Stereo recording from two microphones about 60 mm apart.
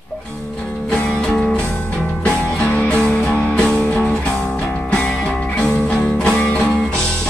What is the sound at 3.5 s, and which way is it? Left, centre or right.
Music, centre.